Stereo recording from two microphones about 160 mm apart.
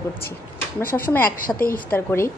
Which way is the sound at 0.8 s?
65° left (ahead or behind).